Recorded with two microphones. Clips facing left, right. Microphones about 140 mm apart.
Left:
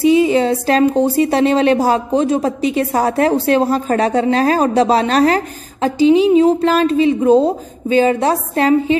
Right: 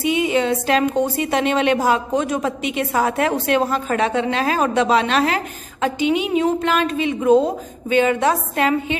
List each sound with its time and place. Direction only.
0.0 s a woman's voice: 35° left (ahead or behind)